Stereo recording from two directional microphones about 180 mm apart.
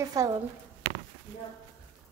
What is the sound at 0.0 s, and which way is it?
Speech, 20° right (ahead or behind).